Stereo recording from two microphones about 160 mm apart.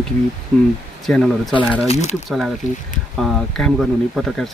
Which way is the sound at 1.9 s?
45° left (ahead or behind).